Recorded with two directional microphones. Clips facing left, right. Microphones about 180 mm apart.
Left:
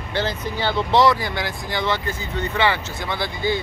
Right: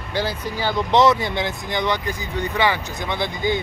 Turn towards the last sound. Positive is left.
turn(degrees=-20)  # may be behind; listen again after turning